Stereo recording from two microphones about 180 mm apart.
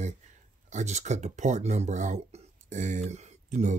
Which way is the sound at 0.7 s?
40° right (ahead or behind).